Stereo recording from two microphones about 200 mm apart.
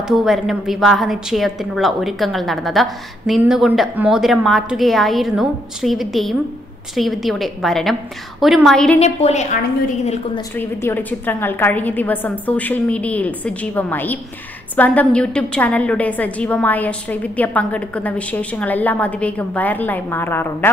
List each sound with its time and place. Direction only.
0.0 s a woman's voice: centre (ahead or behind)
9.0 s a woman's voice: 35° left (ahead or behind)
10.5 s a woman's voice: 10° left (ahead or behind)